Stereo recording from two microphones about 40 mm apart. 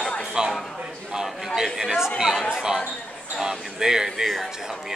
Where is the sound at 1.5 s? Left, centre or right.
Centre.